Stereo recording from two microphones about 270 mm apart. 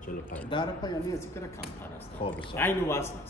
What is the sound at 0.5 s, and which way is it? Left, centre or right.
Speech, centre.